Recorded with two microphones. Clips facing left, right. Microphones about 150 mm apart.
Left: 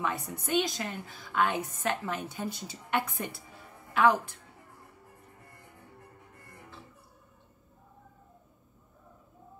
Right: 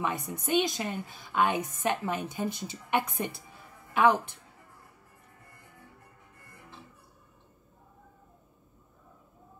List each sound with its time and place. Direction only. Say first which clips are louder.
0.0 s a woman's voice: right 1 dB; 15° right (ahead or behind)